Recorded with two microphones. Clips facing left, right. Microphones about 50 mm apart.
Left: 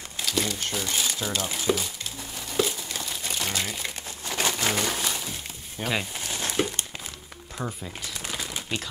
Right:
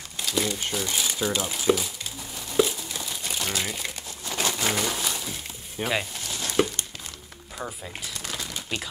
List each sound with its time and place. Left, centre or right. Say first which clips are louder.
0.2 s speech: right 1 dB; centre
2.5 s crumpling: right 3 dB; centre
4.3 s a sound: even; centre
5.8 s speech: right 1 dB; centre
6.1 s a sound: left 2 dB; left
8.1 s crumpling: left 1 dB; centre